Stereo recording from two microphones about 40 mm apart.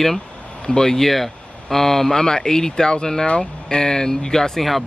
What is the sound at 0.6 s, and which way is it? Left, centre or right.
Speech, left.